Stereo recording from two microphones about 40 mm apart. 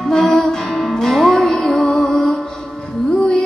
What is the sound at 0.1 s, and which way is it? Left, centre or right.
Music, centre.